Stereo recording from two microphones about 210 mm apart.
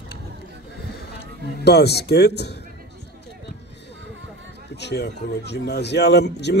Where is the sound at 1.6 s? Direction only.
50° left (ahead or behind).